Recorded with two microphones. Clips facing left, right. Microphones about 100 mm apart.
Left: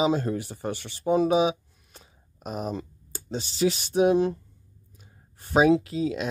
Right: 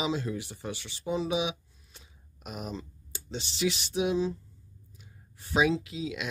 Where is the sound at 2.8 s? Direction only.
50° left (ahead or behind).